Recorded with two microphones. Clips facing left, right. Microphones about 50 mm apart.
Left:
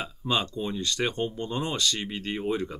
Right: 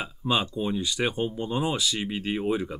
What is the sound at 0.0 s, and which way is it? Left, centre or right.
Speech, centre.